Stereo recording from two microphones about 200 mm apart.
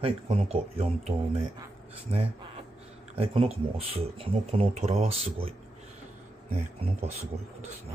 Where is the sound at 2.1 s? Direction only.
30° right (ahead or behind).